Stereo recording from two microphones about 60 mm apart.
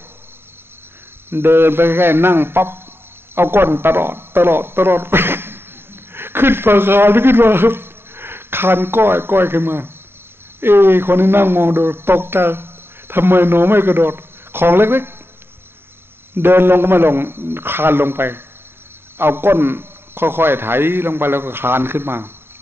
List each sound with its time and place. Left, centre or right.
1.3 s a man's voice: right
16.3 s speech: right